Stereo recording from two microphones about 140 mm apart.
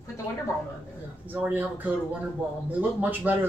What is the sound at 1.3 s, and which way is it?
Speech, 10° right (ahead or behind).